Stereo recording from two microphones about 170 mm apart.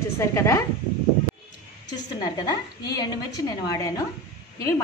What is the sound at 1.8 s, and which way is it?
A woman's voice, 25° left (ahead or behind).